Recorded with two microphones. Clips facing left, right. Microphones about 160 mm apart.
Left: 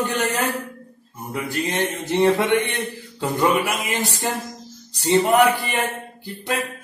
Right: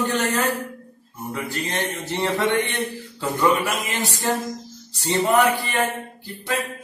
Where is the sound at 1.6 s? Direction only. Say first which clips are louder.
Left 3 dB; 15° left (ahead or behind).